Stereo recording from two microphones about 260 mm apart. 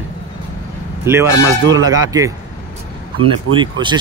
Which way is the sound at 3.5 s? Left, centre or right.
Right.